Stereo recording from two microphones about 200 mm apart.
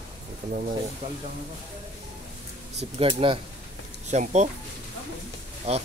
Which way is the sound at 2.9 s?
25° right (ahead or behind).